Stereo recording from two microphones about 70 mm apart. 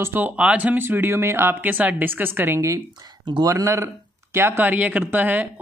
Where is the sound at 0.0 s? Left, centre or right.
Right.